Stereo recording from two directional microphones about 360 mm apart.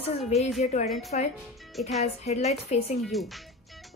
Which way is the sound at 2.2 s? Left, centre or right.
Centre.